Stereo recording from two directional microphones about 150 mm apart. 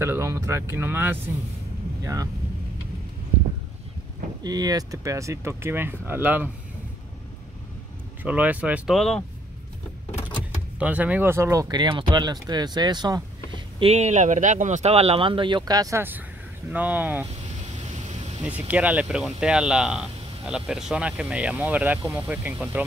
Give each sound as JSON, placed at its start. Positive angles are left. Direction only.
{"t": 0.0, "sound": "speech", "side_deg": -15}
{"t": 4.4, "sound": "speech", "side_deg": -25}
{"t": 8.2, "sound": "speech", "side_deg": -10}
{"t": 10.8, "sound": "speech", "side_deg": -10}
{"t": 11.7, "sound": "speech", "side_deg": -30}
{"t": 18.4, "sound": "speech", "side_deg": -10}